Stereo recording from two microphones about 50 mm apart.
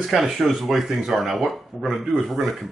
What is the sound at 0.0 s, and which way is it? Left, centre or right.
Speech, centre.